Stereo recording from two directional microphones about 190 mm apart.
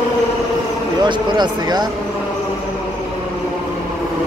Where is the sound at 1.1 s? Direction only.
20° right (ahead or behind).